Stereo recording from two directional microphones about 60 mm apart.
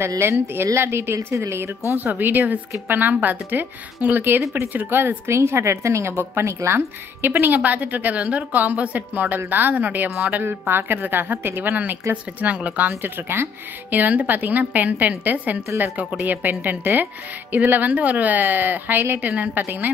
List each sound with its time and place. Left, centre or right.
0.2 s a woman's voice: right
2.0 s speech: right
7.2 s speech: right